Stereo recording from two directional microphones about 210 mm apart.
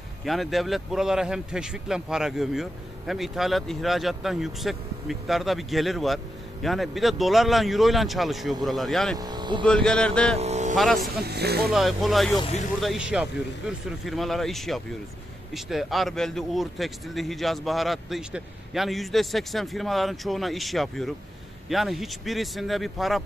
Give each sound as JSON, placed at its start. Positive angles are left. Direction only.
{"t": 0.2, "sound": "a man's voice", "side_deg": 0}
{"t": 9.1, "sound": "speech", "side_deg": -20}
{"t": 9.7, "sound": "a man's voice", "side_deg": 5}
{"t": 10.3, "sound": "vehicle", "side_deg": -30}
{"t": 11.0, "sound": "speech", "side_deg": -50}
{"t": 11.6, "sound": "a man's voice", "side_deg": 0}
{"t": 12.4, "sound": "speech", "side_deg": 30}
{"t": 12.8, "sound": "a man's voice", "side_deg": -5}